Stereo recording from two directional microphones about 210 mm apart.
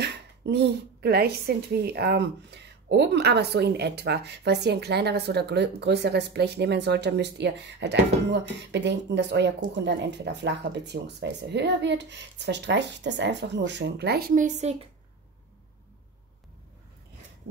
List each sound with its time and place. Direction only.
0.0 s a woman's voice: 50° right (ahead or behind); by 14.9 s 35° right (ahead or behind)